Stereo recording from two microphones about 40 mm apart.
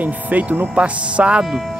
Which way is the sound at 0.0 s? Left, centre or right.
Right.